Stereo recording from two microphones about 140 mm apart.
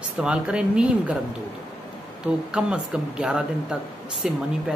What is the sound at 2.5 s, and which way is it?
Speech, 5° right (ahead or behind).